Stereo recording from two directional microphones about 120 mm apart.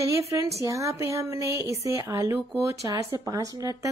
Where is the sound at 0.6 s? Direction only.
25° right (ahead or behind).